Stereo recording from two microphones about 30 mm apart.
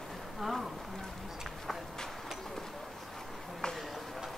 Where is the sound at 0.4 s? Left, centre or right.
Centre.